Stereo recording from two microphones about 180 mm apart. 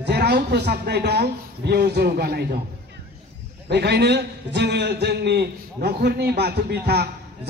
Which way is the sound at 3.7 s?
65° right (ahead or behind).